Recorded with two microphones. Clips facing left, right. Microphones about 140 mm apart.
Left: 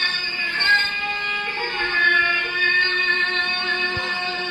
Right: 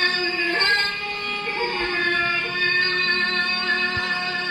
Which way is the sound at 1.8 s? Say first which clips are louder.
Even; 40° right (ahead or behind).